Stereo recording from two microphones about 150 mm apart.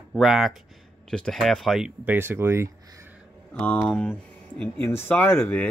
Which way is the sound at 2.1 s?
15° right (ahead or behind).